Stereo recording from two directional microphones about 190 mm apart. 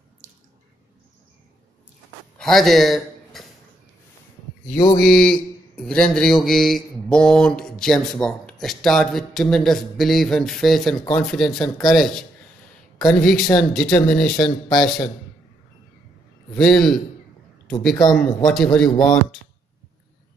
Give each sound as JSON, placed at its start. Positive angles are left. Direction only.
{"t": 2.3, "sound": "a sound", "side_deg": 0}
{"t": 4.9, "sound": "mantra", "side_deg": 0}
{"t": 16.5, "sound": "mantra", "side_deg": 0}
{"t": 17.6, "sound": "speech", "side_deg": 5}
{"t": 18.5, "sound": "mantra", "side_deg": 0}
{"t": 18.9, "sound": "speech", "side_deg": 20}